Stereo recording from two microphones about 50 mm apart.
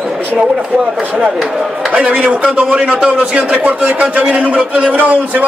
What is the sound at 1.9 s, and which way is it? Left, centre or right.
Speech, right.